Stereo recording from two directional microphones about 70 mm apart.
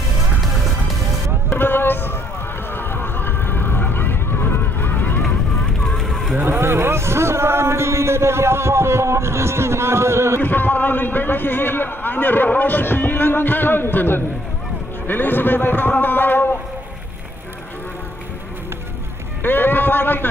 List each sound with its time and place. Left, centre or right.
0.4 s music: centre
1.5 s vehicle: left
5.9 s fowl: centre
6.3 s a sound: right
10.4 s a man's voice: left
19.4 s a sound: left